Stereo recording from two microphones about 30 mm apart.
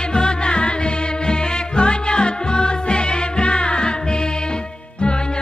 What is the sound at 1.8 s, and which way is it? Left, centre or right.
Music, left.